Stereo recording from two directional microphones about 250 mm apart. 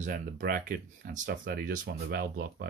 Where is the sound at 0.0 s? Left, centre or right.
Right.